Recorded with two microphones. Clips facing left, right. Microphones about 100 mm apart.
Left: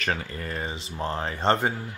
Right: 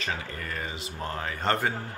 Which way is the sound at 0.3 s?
30° left (ahead or behind).